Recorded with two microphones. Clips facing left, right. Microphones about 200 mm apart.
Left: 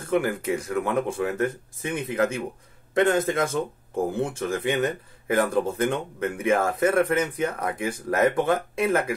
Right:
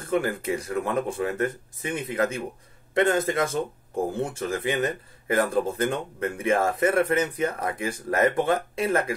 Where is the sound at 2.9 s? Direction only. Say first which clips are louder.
Left 1 dB; centre (ahead or behind).